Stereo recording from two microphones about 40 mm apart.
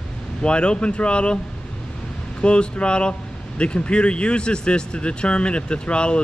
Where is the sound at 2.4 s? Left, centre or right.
Left.